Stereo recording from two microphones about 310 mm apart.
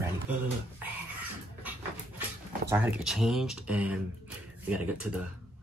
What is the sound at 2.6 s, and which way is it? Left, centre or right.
Speech, centre.